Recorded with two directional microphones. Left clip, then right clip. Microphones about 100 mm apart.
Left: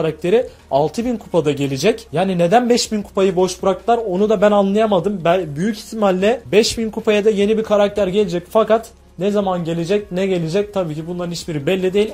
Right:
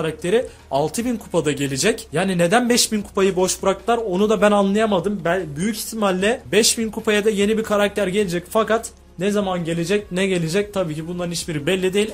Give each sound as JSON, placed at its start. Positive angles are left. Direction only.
{"t": 0.0, "sound": "speech", "side_deg": 35}
{"t": 0.7, "sound": "speech", "side_deg": 20}
{"t": 2.1, "sound": "a man's voice", "side_deg": 10}
{"t": 6.0, "sound": "a man's voice", "side_deg": 30}